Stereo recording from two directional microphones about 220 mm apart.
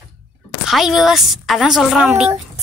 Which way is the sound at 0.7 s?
Centre (ahead or behind).